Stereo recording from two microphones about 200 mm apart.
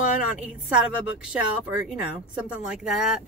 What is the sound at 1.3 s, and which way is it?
Speech, 5° right (ahead or behind).